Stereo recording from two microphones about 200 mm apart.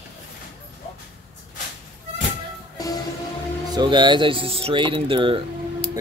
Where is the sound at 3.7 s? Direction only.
20° right (ahead or behind).